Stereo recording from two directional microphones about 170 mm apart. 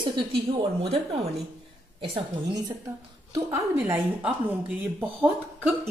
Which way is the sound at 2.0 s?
30° right (ahead or behind).